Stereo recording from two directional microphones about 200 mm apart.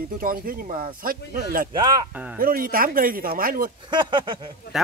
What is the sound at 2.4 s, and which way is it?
Speech, 45° right (ahead or behind).